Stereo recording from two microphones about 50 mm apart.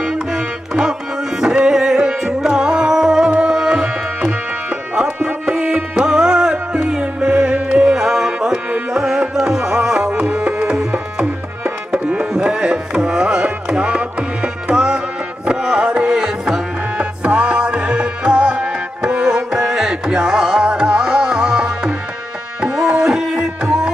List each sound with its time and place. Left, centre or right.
0.0 s music: centre
10.1 s tabla: right
15.4 s music: centre
17.0 s music: right